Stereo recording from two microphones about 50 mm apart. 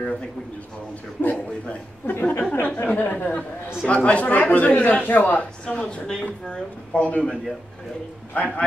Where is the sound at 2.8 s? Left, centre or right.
Left.